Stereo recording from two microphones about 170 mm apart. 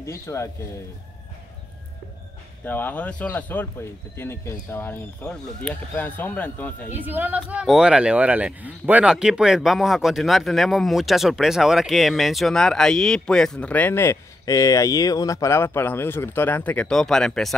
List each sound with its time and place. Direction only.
0.0 s speech: 15° left (ahead or behind)
2.6 s speech: 10° left (ahead or behind)
6.9 s speech: 10° right (ahead or behind)